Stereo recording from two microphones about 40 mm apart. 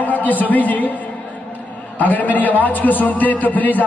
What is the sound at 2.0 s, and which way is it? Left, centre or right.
A man's voice, left.